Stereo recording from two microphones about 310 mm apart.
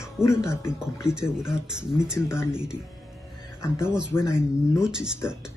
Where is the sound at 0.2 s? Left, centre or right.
Centre.